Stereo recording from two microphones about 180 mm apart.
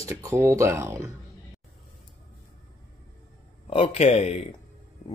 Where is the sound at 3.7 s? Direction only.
30° left (ahead or behind).